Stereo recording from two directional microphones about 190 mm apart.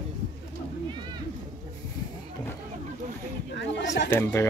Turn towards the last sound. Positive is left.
turn(degrees=15)  # may be behind; listen again after turning